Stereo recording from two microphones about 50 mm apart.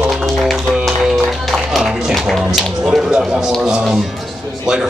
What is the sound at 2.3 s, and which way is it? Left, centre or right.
Tap, centre.